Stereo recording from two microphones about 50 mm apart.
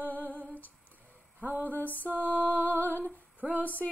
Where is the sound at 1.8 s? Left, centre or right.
Left.